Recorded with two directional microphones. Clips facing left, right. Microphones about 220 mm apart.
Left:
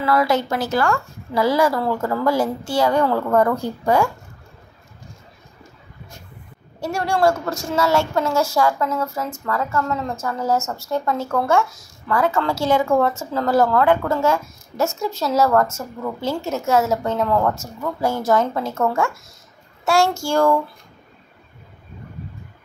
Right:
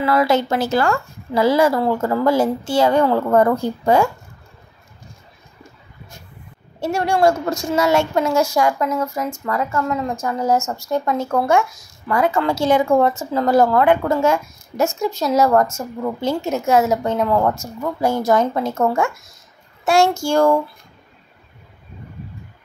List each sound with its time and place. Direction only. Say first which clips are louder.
0.0 s a woman's voice: right 2 dB; 25° right (ahead or behind)
6.8 s speech: right 2 dB; 20° right (ahead or behind)